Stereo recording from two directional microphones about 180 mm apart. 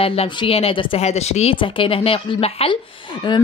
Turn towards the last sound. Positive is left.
turn(degrees=25)  # may be behind; listen again after turning